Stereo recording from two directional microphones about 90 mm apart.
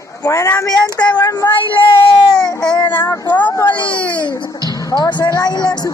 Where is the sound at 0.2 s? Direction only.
35° left (ahead or behind).